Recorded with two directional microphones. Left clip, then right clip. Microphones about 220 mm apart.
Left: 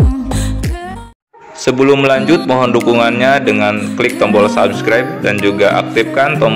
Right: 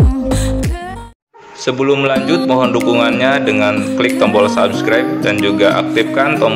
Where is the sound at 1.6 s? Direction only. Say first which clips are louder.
Left 3 dB; 20° left (ahead or behind).